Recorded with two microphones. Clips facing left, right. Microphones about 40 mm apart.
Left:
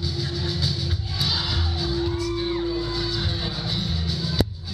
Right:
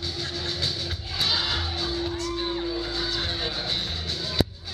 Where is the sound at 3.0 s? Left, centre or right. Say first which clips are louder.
Left 1 dB; centre.